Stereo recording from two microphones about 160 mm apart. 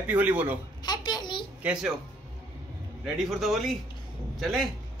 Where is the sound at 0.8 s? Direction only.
25° left (ahead or behind).